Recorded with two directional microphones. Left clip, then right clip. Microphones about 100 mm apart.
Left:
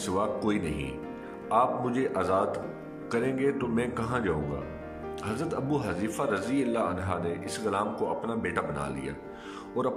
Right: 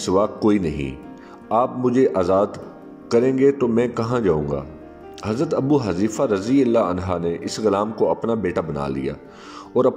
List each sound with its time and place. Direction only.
0.0 s speech: 45° right (ahead or behind)